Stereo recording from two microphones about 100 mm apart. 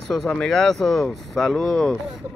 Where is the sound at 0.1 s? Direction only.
5° left (ahead or behind).